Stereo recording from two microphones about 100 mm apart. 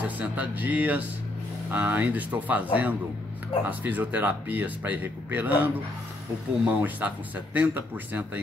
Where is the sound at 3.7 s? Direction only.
15° right (ahead or behind).